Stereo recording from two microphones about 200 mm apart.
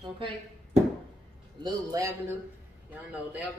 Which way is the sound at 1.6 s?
15° right (ahead or behind).